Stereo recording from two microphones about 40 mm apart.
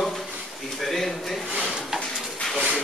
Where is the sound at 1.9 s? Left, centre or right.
Centre.